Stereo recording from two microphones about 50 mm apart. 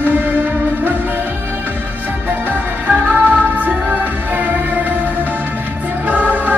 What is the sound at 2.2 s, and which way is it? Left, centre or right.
Music, right.